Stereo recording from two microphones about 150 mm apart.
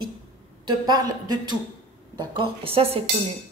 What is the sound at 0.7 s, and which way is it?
A woman's voice, 25° right (ahead or behind).